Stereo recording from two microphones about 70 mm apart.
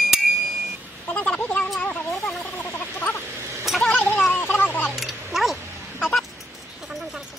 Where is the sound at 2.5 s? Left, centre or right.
Left.